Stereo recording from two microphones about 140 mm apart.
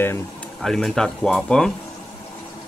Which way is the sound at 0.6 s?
Centre (ahead or behind).